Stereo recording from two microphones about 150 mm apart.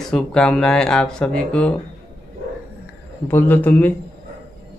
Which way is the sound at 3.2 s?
15° left (ahead or behind).